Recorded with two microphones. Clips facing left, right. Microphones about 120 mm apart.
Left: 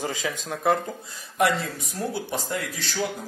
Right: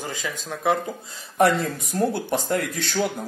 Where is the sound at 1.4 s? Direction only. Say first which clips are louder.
Right 4 dB; 50° right (ahead or behind).